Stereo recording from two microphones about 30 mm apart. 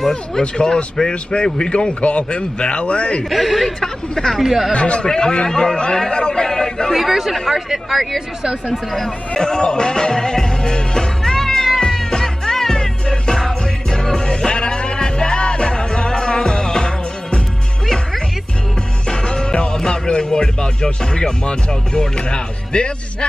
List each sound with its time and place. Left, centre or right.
0.4 s a man's voice: left
3.3 s speech: centre
3.8 s speech: centre
4.4 s speech: centre
4.7 s a man's voice: left
5.1 s a man's voice: left
6.9 s speech: centre
8.4 s speech: right
9.3 s music: left
19.0 s music: left
19.9 s speech: left